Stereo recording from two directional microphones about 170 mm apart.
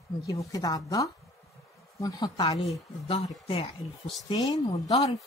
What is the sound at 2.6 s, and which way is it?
A woman's voice, 35° left (ahead or behind).